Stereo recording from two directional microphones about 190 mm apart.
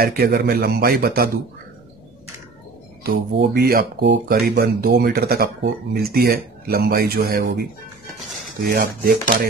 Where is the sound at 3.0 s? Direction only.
55° right (ahead or behind).